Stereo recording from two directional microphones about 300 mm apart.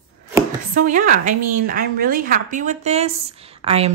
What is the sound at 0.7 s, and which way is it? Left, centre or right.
A woman's voice, right.